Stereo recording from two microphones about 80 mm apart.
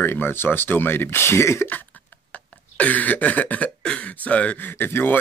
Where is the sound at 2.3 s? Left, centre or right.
Centre.